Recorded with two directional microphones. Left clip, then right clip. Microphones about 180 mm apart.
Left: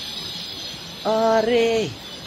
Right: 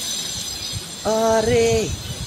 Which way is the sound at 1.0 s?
Centre (ahead or behind).